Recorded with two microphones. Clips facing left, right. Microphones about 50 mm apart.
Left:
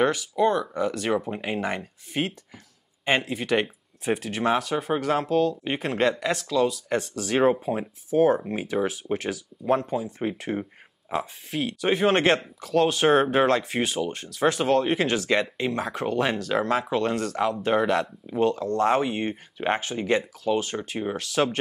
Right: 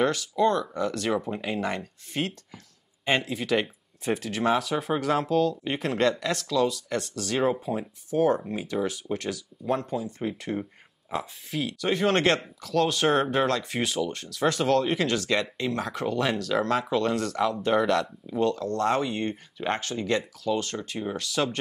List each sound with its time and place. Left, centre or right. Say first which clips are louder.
0.0 s speech: left 1 dB; centre
8.1 s speech: left 3 dB; centre
8.5 s speech: left 3 dB; left
8.8 s speech: left 2 dB; centre
13.7 s speech: left 2 dB; centre
21.2 s speech: left 4 dB; centre